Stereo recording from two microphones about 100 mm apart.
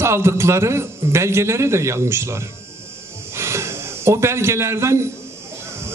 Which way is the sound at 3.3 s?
25° right (ahead or behind).